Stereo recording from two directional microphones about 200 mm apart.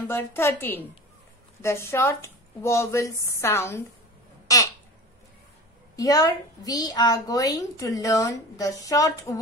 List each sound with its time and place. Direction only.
0.1 s a woman's voice: 10° left (ahead or behind)
4.5 s a sound: 15° left (ahead or behind)
5.9 s a woman's voice: 20° left (ahead or behind)